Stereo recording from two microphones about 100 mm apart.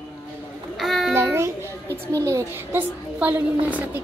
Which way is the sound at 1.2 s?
25° right (ahead or behind).